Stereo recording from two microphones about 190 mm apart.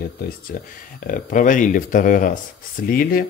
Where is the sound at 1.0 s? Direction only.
45° left (ahead or behind).